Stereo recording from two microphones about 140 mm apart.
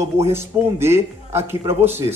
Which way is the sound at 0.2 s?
20° right (ahead or behind).